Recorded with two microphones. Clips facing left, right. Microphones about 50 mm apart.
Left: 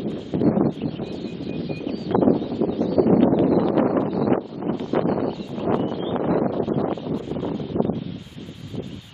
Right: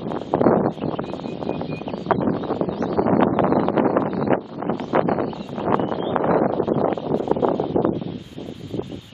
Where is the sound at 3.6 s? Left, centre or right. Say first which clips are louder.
Even; centre.